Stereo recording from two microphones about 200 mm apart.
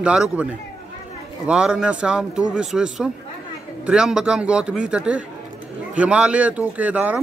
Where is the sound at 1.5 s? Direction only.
5° right (ahead or behind).